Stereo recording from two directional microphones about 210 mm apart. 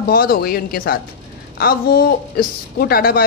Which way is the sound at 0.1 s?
45° left (ahead or behind).